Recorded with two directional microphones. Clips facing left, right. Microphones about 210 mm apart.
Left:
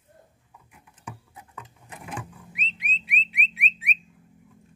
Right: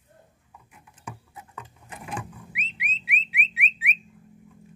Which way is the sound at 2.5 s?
10° right (ahead or behind).